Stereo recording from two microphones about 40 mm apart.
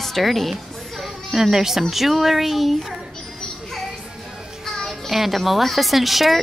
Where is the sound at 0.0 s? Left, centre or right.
Centre.